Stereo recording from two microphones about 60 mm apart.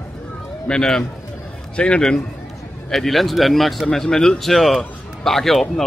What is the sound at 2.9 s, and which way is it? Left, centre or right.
Speech, centre.